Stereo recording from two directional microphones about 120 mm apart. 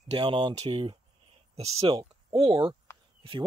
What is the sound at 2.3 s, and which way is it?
Speech, 45° right (ahead or behind).